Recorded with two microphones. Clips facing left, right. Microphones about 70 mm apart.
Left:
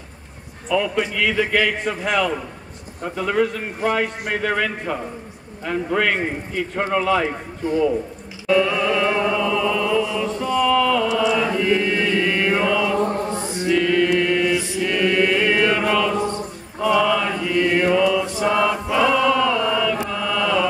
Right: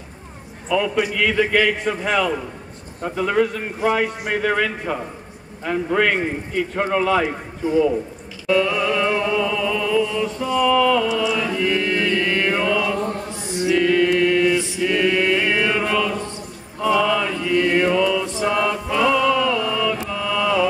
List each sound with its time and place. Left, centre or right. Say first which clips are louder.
0.7 s a man's voice: right 1 dB; centre
8.5 s chant: left 1 dB; centre
13.1 s chant: left 3 dB; left
13.7 s mantra: right 1 dB; centre